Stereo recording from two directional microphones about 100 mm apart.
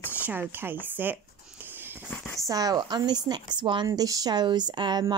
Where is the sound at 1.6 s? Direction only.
20° right (ahead or behind).